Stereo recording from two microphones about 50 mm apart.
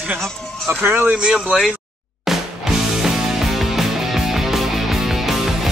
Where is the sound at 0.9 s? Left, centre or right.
Right.